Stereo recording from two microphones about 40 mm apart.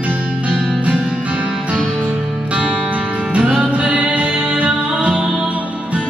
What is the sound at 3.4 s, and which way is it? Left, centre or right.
Music, centre.